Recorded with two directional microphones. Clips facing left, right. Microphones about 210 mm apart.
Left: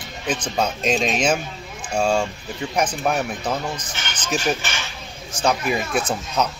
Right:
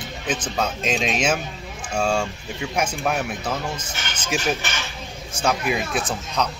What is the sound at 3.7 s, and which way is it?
Speech, 25° right (ahead or behind).